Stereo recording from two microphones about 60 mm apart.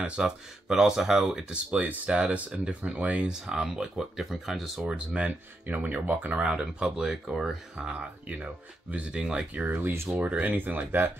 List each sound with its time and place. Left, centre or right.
0.2 s speech: centre
3.4 s speech: centre
4.8 s speech: centre
6.4 s speech: centre
9.6 s speech: right
10.1 s speech: right